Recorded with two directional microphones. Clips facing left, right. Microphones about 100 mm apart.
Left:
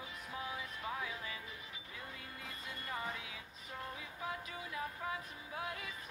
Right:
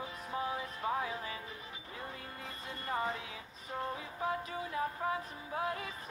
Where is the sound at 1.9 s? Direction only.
35° right (ahead or behind).